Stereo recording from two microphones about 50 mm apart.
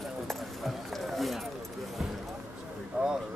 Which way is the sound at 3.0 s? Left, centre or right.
Right.